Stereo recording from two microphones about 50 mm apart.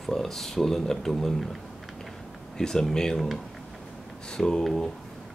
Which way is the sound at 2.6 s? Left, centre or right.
Centre.